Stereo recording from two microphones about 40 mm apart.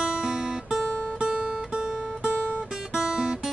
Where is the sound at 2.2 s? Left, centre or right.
Right.